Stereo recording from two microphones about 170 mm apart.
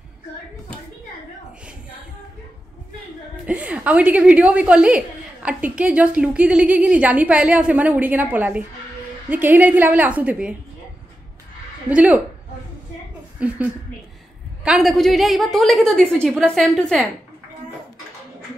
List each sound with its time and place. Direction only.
3.4 s a woman's voice: 5° right (ahead or behind)
11.9 s a woman's voice: 10° right (ahead or behind)
14.6 s a woman's voice: 5° right (ahead or behind)